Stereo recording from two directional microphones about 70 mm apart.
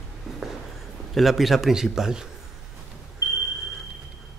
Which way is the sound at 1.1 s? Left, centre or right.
Centre.